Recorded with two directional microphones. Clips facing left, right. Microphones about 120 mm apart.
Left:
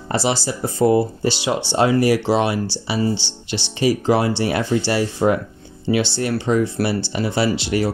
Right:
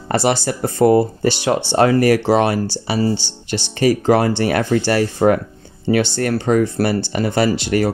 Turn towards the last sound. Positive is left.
turn(degrees=-50)  # may be behind; listen again after turning